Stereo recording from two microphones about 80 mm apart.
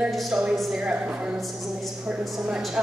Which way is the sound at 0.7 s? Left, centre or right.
Centre.